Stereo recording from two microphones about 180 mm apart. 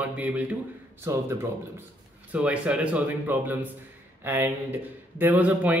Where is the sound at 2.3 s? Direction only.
5° right (ahead or behind).